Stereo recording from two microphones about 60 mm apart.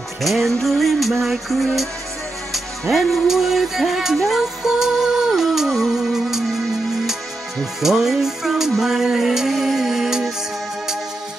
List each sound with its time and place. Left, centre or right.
0.2 s music: centre
2.9 s music: centre
7.8 s music: centre